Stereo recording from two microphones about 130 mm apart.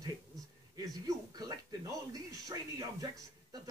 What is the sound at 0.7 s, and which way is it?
Speech, 30° right (ahead or behind).